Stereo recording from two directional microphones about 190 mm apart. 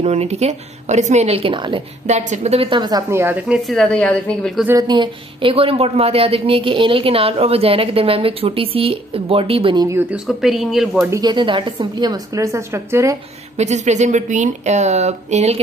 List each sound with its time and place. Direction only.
0.0 s speech: 35° right (ahead or behind)
2.0 s a woman's voice: 40° right (ahead or behind); by 4.6 s 5° left (ahead or behind)
4.6 s speech: 20° right (ahead or behind)
9.8 s speech: 10° right (ahead or behind)
11.1 s speech: 20° right (ahead or behind)
13.6 s speech: 35° right (ahead or behind)